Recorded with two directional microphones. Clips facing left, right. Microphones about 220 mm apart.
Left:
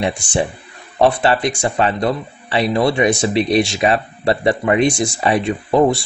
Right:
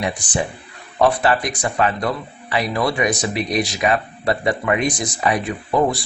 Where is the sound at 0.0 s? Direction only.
25° left (ahead or behind).